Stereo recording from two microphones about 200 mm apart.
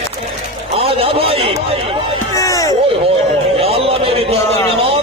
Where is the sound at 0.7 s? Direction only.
30° right (ahead or behind).